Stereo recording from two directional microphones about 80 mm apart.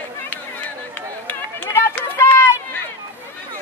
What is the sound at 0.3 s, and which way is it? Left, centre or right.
Run, centre.